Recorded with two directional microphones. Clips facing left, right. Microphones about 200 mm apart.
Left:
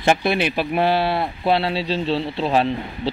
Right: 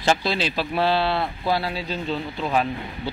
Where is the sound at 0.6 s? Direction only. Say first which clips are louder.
Left 3 dB; 15° left (ahead or behind).